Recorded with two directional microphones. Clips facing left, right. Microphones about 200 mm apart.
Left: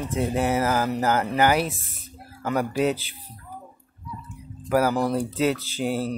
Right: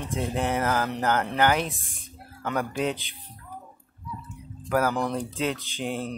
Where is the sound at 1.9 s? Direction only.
5° left (ahead or behind).